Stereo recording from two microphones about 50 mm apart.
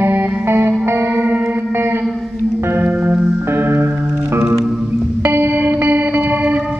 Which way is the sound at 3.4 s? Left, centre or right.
Right.